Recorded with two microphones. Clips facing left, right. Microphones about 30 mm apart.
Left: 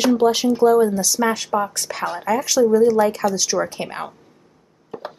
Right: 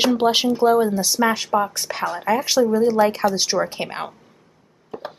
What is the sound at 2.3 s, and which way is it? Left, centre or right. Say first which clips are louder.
Speech: left 2 dB; right.